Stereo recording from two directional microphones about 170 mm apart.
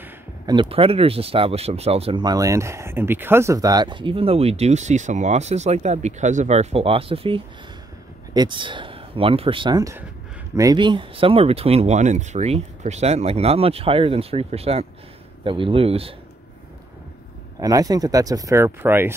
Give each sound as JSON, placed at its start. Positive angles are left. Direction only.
{"t": 0.5, "sound": "speech", "side_deg": -30}
{"t": 17.6, "sound": "speech", "side_deg": -20}